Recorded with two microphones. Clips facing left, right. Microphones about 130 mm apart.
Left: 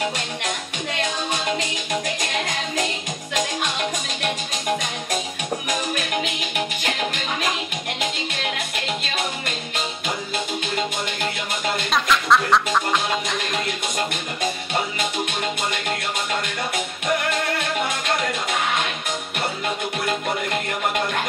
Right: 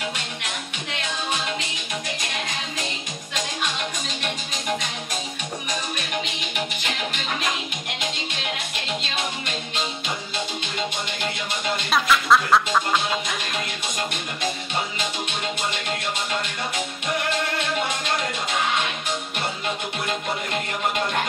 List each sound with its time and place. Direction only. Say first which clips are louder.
5.7 s music: left 3 dB; 50° left (ahead or behind)
11.9 s music: even; centre (ahead or behind)